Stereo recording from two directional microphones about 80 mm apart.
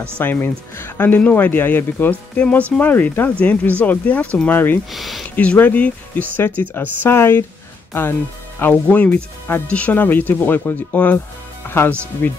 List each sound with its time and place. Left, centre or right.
0.2 s speech: left
4.9 s speech: centre
5.3 s speech: centre